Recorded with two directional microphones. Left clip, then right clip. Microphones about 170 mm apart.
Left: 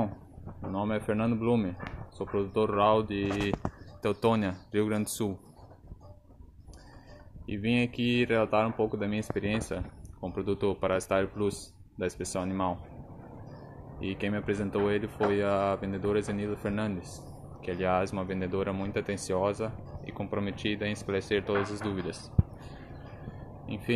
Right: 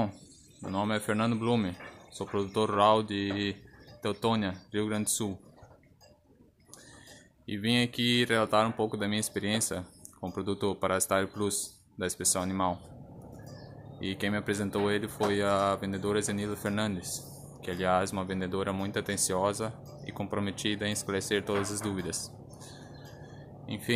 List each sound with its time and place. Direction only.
0.7 s speech: 5° right (ahead or behind)
7.4 s speech: 5° right (ahead or behind)
12.4 s speech: 10° right (ahead or behind)
13.9 s speech: 5° right (ahead or behind)